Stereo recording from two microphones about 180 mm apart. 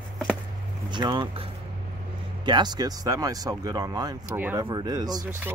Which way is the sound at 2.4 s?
25° right (ahead or behind).